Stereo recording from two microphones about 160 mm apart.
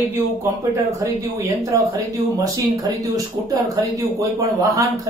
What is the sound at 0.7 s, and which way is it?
Speech, 20° right (ahead or behind).